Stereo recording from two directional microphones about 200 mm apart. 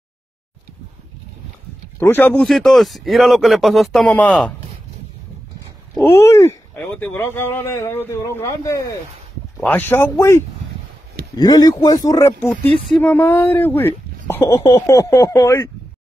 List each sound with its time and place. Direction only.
2.0 s speech: 10° left (ahead or behind)
6.0 s speech: 15° left (ahead or behind)